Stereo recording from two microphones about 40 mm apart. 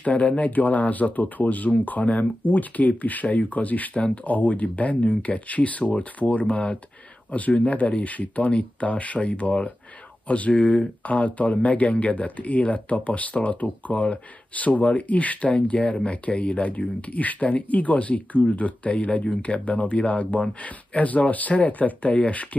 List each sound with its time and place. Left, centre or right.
0.0 s speech: left
3.9 s speech: left